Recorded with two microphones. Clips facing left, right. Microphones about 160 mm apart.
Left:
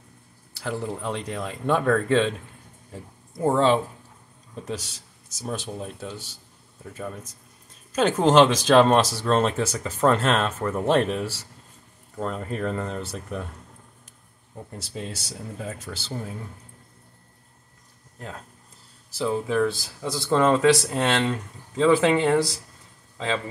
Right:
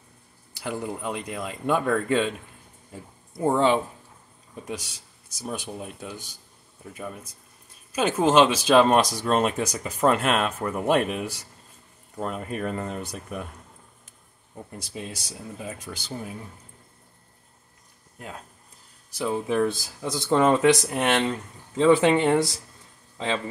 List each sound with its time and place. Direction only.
0.6 s speech: 15° right (ahead or behind)
3.5 s speech: 10° right (ahead or behind)
14.8 s speech: 10° right (ahead or behind)
19.1 s speech: 20° right (ahead or behind)